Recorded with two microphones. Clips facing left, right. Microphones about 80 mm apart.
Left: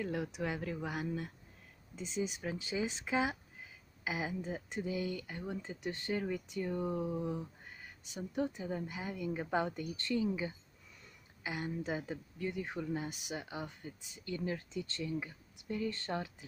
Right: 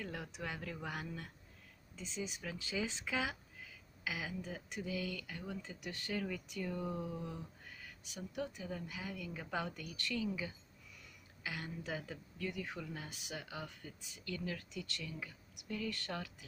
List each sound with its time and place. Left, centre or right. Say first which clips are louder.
0.0 s speech: left 7 dB; centre